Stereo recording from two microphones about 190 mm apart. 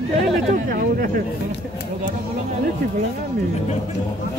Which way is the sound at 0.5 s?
50° right (ahead or behind).